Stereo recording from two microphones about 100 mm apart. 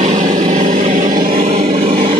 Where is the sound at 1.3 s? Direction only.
90° right.